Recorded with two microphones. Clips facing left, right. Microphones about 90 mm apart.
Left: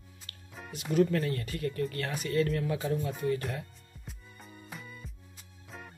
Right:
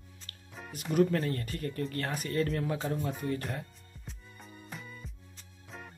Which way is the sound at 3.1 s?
Centre (ahead or behind).